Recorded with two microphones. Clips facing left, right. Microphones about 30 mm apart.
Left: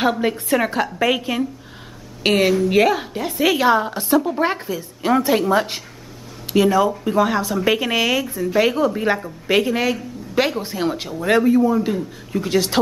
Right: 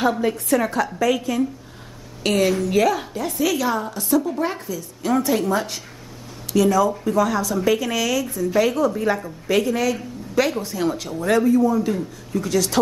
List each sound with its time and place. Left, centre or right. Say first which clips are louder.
0.3 s a woman's voice: left 1 dB; left